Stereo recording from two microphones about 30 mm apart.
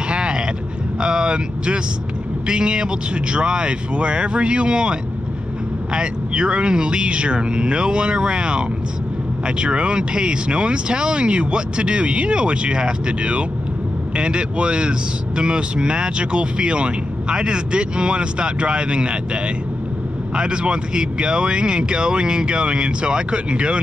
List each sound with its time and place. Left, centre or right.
0.1 s vehicle: right
0.9 s speech: right
5.9 s speech: right